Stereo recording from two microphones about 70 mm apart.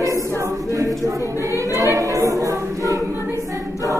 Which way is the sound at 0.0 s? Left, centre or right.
Right.